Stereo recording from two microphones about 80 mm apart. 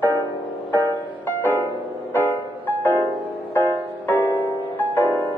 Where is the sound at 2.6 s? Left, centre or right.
Left.